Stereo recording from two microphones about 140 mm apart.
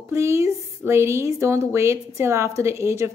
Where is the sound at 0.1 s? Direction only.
20° right (ahead or behind).